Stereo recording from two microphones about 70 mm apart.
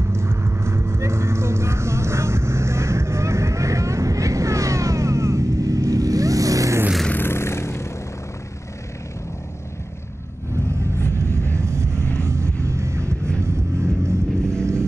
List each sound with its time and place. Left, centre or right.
0.0 s clip-clop: right
7.1 s music: left
11.5 s vehicle: right
13.4 s music: right